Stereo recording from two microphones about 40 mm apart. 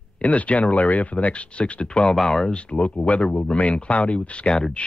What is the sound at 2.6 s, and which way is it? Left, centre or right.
Speech, left.